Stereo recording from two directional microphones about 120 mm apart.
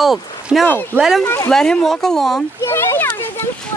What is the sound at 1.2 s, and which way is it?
Speech, 20° left (ahead or behind).